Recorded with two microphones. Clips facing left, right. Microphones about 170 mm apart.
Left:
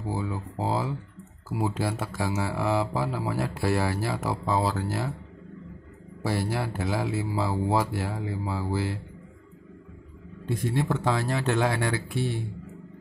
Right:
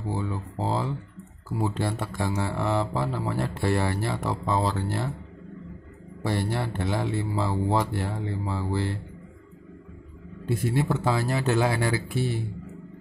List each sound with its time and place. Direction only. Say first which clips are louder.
0.0 s speech: even; 10° left (ahead or behind)
6.2 s speech: even; 5° left (ahead or behind)
10.4 s speech: right 2 dB; 5° right (ahead or behind)